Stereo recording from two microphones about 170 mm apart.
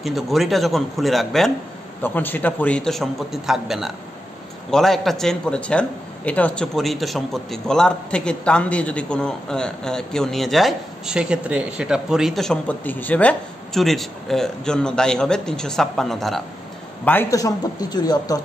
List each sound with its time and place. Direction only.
0.0 s a man's voice: centre (ahead or behind)
17.0 s speech: 10° left (ahead or behind)